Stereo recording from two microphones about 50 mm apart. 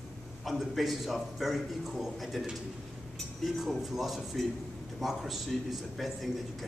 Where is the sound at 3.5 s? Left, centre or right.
Centre.